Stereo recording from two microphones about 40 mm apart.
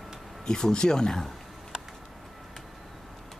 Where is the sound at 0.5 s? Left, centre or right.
Centre.